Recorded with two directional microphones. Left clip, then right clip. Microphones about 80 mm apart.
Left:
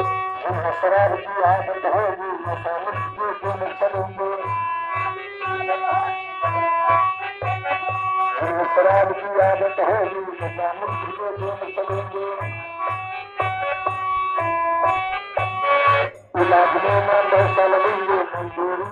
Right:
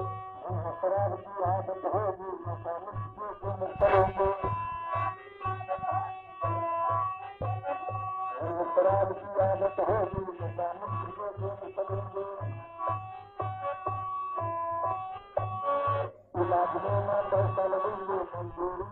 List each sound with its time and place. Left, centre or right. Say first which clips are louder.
0.0 s music: left 15 dB; centre
1.1 s music: left 12 dB; centre
3.8 s music: even; right; by 10.1 s centre
11.2 s music: left 10 dB; centre
13.4 s music: left 11 dB; centre
15.0 s music: left 11 dB; centre